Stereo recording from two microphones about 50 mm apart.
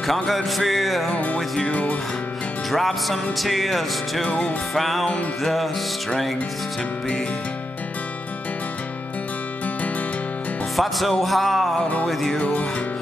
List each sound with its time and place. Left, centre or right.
0.0 s music: centre
1.1 s music: left
2.7 s music: centre
4.3 s music: left
4.7 s music: centre
10.8 s music: centre
12.4 s music: left